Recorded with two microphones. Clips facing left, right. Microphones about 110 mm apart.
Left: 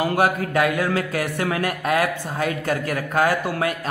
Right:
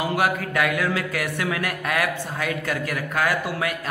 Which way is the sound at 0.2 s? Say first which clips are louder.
Left 4 dB; 30° left (ahead or behind).